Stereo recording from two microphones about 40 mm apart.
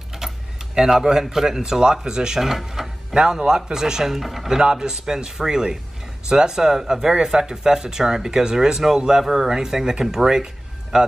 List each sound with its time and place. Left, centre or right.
0.2 s keys jangling: centre
0.7 s speech: centre
4.5 s speech: centre